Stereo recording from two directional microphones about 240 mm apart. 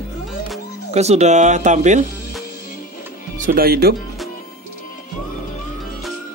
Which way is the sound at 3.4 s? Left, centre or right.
Right.